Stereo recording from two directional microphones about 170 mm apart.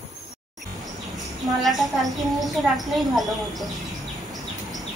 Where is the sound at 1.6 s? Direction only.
Centre (ahead or behind).